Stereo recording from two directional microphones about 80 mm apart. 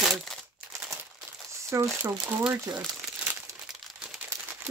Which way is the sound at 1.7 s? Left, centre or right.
Right.